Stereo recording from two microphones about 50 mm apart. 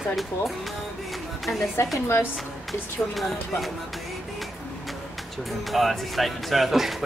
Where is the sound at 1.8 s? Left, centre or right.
Left.